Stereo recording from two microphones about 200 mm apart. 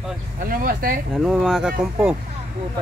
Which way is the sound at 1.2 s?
Centre (ahead or behind).